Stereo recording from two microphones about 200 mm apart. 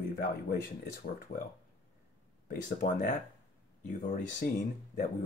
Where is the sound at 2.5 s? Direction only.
45° left (ahead or behind).